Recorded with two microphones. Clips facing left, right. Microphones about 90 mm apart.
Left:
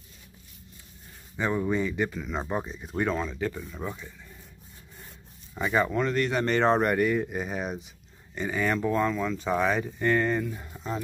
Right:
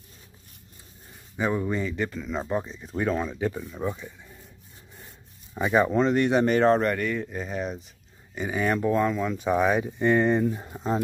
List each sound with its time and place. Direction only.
1.3 s speech: 5° right (ahead or behind)
3.2 s speech: 15° right (ahead or behind)
5.5 s speech: 15° right (ahead or behind)
6.4 s speech: 5° right (ahead or behind)
6.8 s speech: 10° left (ahead or behind)
8.4 s speech: 10° right (ahead or behind); by 11.0 s 30° right (ahead or behind)